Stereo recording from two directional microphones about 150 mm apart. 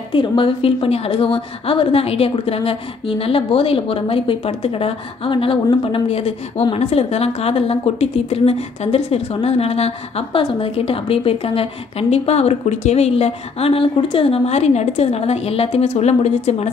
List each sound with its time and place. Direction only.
0.1 s a woman's voice: 35° left (ahead or behind)